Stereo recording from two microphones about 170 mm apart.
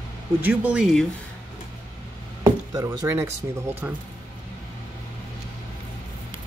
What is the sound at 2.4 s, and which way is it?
Speech, 20° right (ahead or behind).